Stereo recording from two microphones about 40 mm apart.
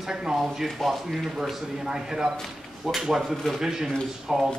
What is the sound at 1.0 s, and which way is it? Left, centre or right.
Speech, centre.